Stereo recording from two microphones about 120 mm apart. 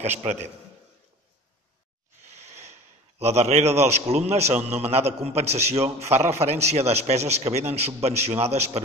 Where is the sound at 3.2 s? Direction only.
65° right (ahead or behind).